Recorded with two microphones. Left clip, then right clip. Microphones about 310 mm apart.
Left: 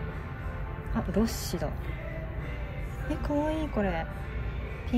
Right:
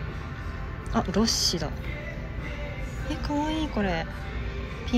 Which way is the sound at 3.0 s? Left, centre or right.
Centre.